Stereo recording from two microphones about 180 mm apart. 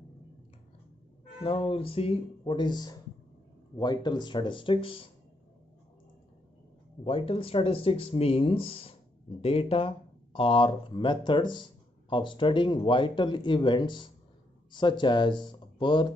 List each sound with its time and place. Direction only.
1.4 s speech: 30° left (ahead or behind)
7.1 s speech: 30° left (ahead or behind)